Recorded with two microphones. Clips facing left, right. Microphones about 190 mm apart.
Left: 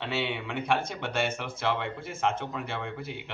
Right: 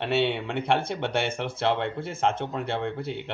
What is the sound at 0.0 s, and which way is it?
Speech, 60° right (ahead or behind).